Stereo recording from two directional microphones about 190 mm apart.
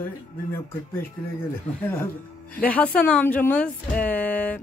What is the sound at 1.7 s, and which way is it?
Speech, 5° left (ahead or behind).